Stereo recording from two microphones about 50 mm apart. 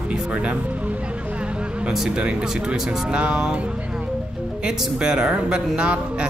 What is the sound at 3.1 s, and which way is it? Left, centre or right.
Speech, right.